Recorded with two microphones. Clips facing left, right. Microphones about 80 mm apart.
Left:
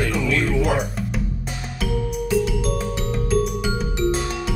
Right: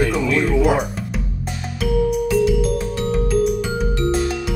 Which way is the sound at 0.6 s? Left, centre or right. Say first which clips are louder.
Right 4 dB; centre.